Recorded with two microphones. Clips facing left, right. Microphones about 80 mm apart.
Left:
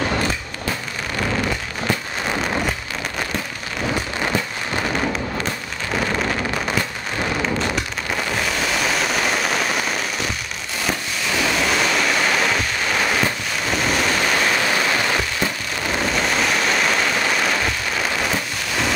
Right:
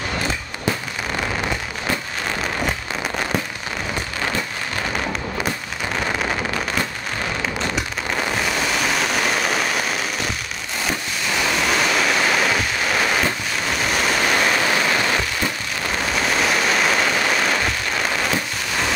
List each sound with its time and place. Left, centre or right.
8.4 s vehicle: centre
11.3 s waves: centre
16.2 s rain: centre